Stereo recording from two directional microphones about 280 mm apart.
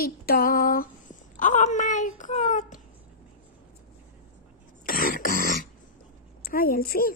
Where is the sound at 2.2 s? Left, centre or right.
Left.